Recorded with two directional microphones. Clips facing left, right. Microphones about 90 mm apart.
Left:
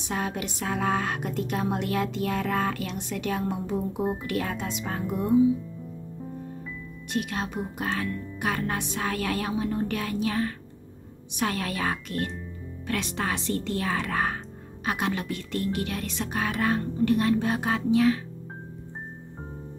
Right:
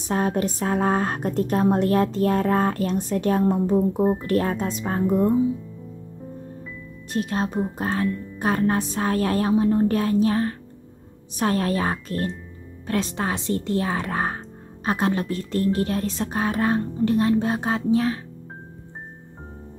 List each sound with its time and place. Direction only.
0.1 s speech: 40° right (ahead or behind)
7.1 s speech: 35° right (ahead or behind)